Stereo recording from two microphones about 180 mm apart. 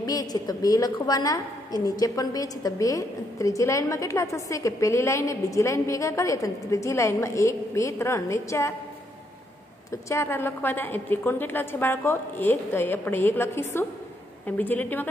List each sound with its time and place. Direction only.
0.0 s a woman's voice: 20° left (ahead or behind)
10.0 s a woman's voice: 15° left (ahead or behind)